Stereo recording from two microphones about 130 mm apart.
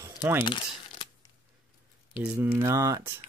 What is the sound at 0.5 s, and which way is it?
Crumpling, 40° left (ahead or behind).